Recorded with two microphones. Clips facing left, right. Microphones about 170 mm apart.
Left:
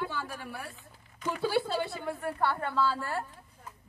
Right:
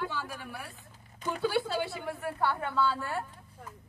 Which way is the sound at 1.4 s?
Centre (ahead or behind).